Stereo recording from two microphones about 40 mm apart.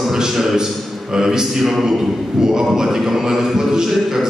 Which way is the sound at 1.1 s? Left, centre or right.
Centre.